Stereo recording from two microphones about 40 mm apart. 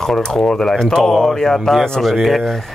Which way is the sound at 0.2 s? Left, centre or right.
Centre.